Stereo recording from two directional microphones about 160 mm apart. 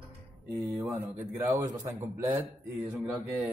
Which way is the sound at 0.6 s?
20° right (ahead or behind).